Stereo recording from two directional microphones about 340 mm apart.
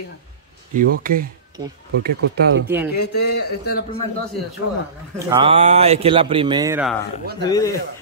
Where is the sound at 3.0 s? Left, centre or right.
Left.